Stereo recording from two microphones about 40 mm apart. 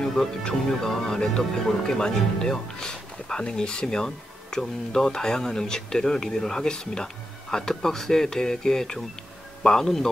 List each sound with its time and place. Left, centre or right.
0.0 s speech: centre